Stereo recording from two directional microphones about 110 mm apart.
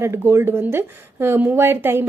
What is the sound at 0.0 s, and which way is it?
A woman's voice, 25° right (ahead or behind).